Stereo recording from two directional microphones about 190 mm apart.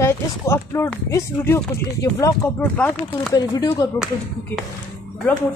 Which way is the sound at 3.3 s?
20° left (ahead or behind).